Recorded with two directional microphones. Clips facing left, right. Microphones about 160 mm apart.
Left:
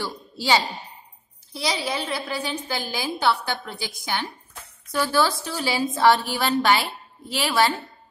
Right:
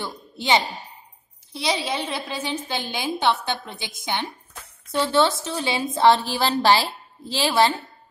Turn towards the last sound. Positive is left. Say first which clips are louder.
# right 2 dB
turn(degrees=-25)  # may be behind; listen again after turning